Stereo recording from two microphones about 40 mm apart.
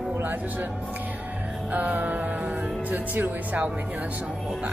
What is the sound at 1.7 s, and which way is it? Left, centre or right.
Music, right.